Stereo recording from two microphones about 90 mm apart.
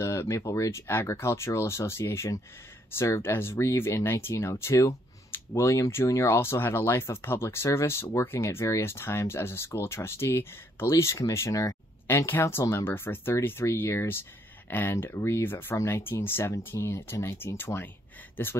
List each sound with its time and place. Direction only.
0.0 s speech: 30° left (ahead or behind)
12.3 s speech: 25° left (ahead or behind)